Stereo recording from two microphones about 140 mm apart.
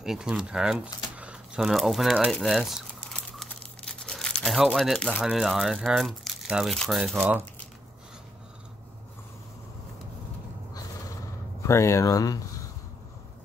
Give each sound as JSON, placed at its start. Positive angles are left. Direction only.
{"t": 0.0, "sound": "speech", "side_deg": -5}
{"t": 1.1, "sound": "a sound", "side_deg": -10}
{"t": 4.0, "sound": "speech", "side_deg": 5}
{"t": 11.6, "sound": "speech", "side_deg": 20}